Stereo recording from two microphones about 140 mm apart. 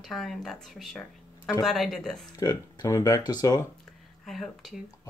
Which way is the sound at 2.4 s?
25° left (ahead or behind).